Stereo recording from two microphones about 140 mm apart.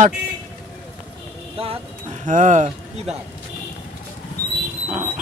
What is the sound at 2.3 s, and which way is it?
Speech, 65° right (ahead or behind).